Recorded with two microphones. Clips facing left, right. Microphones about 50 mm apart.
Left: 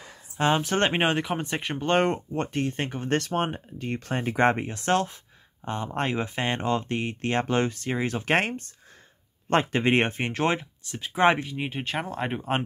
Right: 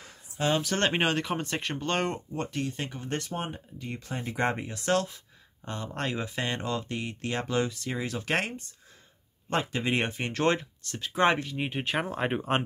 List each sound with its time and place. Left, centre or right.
0.4 s speech: left
10.2 s speech: centre
11.5 s speech: centre